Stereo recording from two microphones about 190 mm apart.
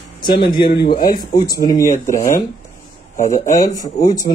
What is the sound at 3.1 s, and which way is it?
Speech, 40° left (ahead or behind).